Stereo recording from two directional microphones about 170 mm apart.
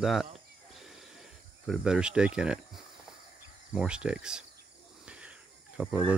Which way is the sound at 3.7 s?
5° right (ahead or behind).